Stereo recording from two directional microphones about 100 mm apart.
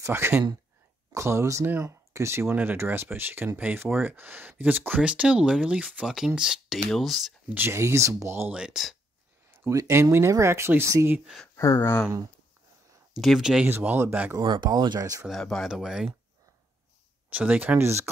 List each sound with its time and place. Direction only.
0.0 s speech: 25° right (ahead or behind); by 7.3 s centre (ahead or behind)
7.4 s speech: 20° right (ahead or behind)
8.5 s speech: 10° right (ahead or behind)
9.5 s a sound: 20° right (ahead or behind)
9.8 s speech: 30° right (ahead or behind)
11.4 s speech: 25° left (ahead or behind)
13.1 s speech: centre (ahead or behind)
13.7 s speech: 20° right (ahead or behind)
14.4 s speech: 50° right (ahead or behind)
15.0 s speech: 35° right (ahead or behind)
15.2 s speech: 5° left (ahead or behind)
17.3 s speech: 15° right (ahead or behind)